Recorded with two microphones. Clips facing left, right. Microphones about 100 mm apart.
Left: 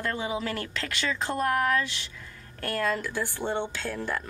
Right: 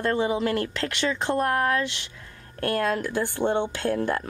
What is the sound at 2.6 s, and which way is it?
Speech, 55° right (ahead or behind).